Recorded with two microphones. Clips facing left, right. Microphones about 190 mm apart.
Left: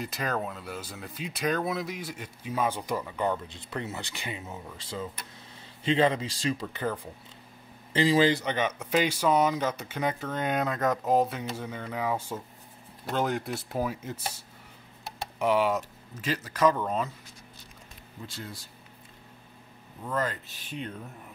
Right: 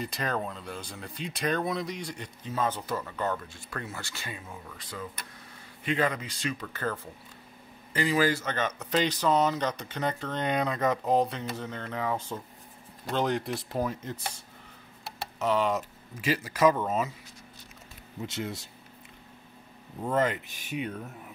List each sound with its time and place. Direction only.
0.0 s speech: centre (ahead or behind); by 6.7 s 30° left (ahead or behind)
6.7 s speech: 15° left (ahead or behind)
7.9 s speech: 25° left (ahead or behind); by 14.3 s 5° left (ahead or behind)
15.3 s speech: 10° left (ahead or behind)
15.7 s speech: 10° right (ahead or behind)
18.2 s speech: 25° right (ahead or behind)
20.0 s speech: 25° right (ahead or behind); by 21.1 s 5° right (ahead or behind)